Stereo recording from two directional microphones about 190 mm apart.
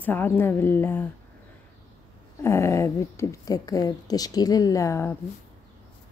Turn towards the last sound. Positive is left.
turn(degrees=15)  # may be behind; listen again after turning